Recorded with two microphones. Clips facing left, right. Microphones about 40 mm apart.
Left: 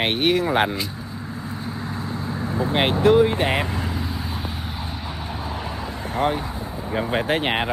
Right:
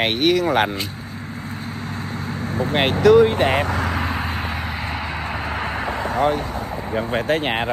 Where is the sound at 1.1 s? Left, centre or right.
Right.